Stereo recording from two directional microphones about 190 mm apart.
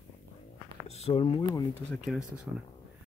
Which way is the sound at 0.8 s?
35° left (ahead or behind).